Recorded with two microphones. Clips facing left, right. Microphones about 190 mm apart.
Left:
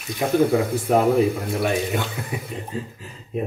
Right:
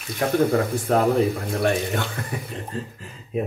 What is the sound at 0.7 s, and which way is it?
Speech, 10° left (ahead or behind).